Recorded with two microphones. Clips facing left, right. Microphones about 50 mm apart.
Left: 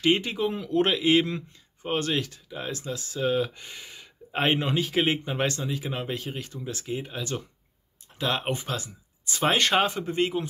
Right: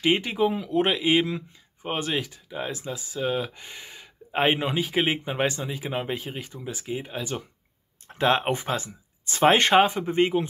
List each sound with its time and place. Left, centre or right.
0.0 s a man's voice: centre
8.2 s speech: right
9.8 s a man's voice: centre
10.1 s speech: right